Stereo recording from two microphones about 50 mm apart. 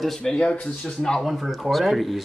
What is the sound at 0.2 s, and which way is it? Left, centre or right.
Speech, left.